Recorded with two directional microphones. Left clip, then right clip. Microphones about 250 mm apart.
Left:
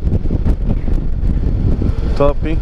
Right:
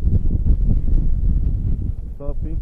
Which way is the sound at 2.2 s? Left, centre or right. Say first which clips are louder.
Left 19 dB; centre.